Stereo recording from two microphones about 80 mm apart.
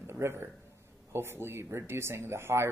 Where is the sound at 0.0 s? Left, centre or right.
Right.